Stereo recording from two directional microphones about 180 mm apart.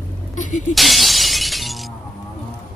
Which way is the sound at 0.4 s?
45° left (ahead or behind).